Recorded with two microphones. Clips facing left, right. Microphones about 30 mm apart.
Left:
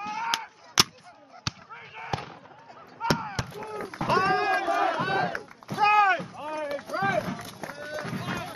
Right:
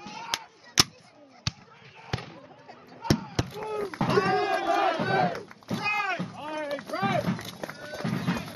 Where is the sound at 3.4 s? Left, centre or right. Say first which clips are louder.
Right 3 dB; centre.